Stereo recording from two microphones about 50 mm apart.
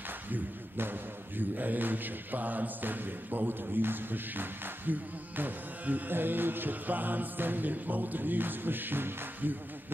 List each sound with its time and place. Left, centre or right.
0.3 s a man's voice: right